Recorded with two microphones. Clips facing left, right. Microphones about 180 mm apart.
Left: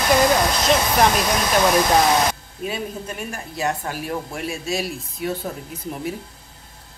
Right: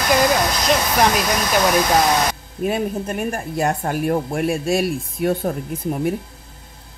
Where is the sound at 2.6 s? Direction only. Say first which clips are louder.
Right 7 dB; 50° right (ahead or behind).